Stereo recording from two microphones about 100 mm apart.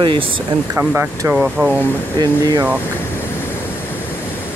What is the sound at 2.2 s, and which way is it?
Speech, 45° right (ahead or behind).